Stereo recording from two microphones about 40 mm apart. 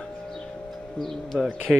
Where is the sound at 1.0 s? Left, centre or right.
Centre.